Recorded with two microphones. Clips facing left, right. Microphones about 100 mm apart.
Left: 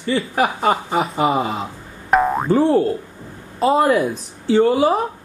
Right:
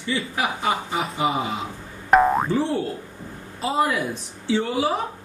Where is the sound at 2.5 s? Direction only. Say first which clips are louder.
Left 8 dB; 45° left (ahead or behind).